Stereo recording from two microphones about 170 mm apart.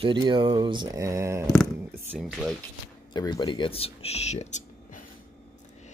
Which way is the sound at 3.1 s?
25° left (ahead or behind).